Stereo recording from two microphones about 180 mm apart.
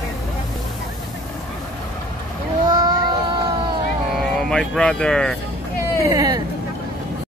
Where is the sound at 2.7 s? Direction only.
20° right (ahead or behind).